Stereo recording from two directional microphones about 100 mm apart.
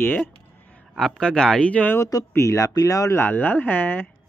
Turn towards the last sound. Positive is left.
turn(degrees=20)  # may be behind; listen again after turning